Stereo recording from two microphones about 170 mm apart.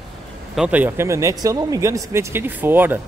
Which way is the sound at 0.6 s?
10° right (ahead or behind).